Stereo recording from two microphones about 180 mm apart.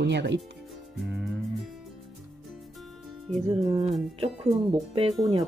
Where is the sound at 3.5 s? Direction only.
30° right (ahead or behind).